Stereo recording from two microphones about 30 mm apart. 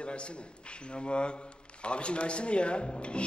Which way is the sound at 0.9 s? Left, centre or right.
Left.